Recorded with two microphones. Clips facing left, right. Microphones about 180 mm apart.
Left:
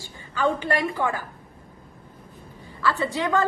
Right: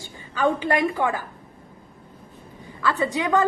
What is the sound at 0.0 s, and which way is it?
A woman's voice, 15° right (ahead or behind).